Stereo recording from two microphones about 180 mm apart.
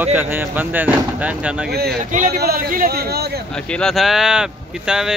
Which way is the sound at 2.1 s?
50° right (ahead or behind).